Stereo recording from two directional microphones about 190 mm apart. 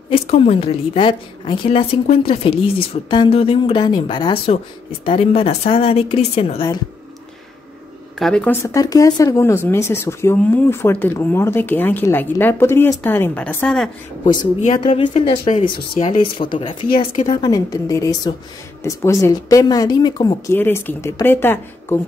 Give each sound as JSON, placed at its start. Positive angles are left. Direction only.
{"t": 0.1, "sound": "a woman's voice", "side_deg": 30}
{"t": 8.2, "sound": "speech", "side_deg": 5}
{"t": 8.6, "sound": "speech", "side_deg": 20}
{"t": 14.8, "sound": "a woman's voice", "side_deg": 25}
{"t": 17.1, "sound": "a woman's voice", "side_deg": 45}
{"t": 17.4, "sound": "speech", "side_deg": 20}